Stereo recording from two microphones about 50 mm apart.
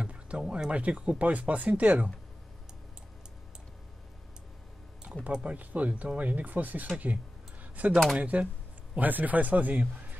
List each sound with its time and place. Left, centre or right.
0.0 s a sound: right
0.5 s speech: right
5.3 s speech: right